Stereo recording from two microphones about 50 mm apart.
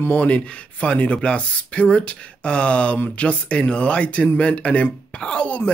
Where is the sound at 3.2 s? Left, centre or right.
Left.